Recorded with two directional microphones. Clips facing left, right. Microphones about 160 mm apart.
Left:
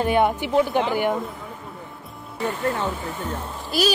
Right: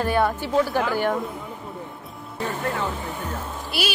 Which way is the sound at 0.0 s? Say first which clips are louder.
Left 2 dB; 20° left (ahead or behind).